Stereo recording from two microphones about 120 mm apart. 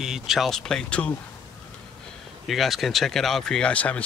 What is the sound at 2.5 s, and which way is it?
Speech, centre (ahead or behind).